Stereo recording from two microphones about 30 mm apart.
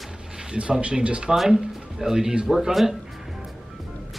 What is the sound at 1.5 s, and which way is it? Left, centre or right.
Speech, centre.